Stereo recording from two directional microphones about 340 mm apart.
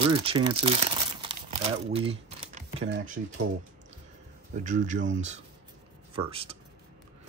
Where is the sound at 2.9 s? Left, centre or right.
Right.